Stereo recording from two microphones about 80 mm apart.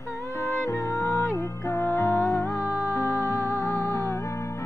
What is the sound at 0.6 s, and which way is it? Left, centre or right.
Music, left.